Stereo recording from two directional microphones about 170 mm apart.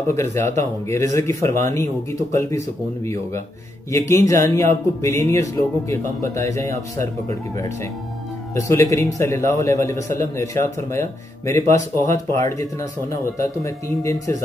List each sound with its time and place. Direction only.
0.1 s a man's voice: 15° left (ahead or behind)
4.1 s a man's voice: 20° left (ahead or behind)